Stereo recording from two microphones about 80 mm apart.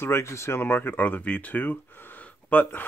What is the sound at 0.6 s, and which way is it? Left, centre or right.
Speech, left.